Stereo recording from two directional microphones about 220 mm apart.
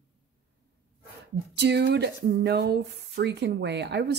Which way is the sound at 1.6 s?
50° right (ahead or behind).